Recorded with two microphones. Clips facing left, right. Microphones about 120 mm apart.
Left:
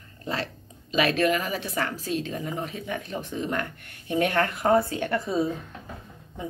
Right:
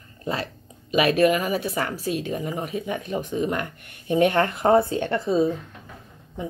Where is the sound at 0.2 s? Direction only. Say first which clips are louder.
Right 3 dB; 15° right (ahead or behind).